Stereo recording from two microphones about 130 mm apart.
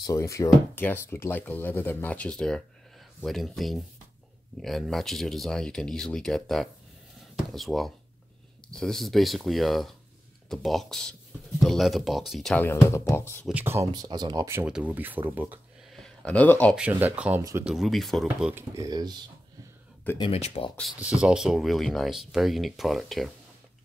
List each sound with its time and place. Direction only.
0.0 s speech: 25° left (ahead or behind); by 12.5 s centre (ahead or behind)
12.5 s speech: 20° left (ahead or behind)
13.5 s speech: 15° right (ahead or behind)
13.9 s speech: 30° right (ahead or behind)
14.7 s speech: 10° right (ahead or behind)
15.9 s a sound: 5° left (ahead or behind)
16.7 s speech: 10° right (ahead or behind)
17.4 s speech: 25° right (ahead or behind)
17.6 s speech: centre (ahead or behind)
18.8 s speech: 30° right (ahead or behind)
20.2 s speech: 50° left (ahead or behind)
21.0 s speech: 10° right (ahead or behind)